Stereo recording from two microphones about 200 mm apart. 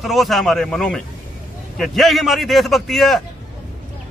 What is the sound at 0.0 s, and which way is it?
A man's voice, centre (ahead or behind).